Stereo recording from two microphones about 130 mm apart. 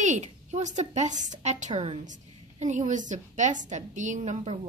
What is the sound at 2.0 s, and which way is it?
A woman's voice, 70° right (ahead or behind).